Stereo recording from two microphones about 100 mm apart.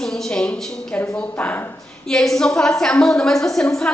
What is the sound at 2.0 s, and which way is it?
A woman's voice, 5° left (ahead or behind).